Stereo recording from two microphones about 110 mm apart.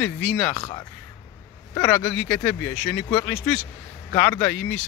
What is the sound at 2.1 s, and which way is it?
Speech, 10° left (ahead or behind).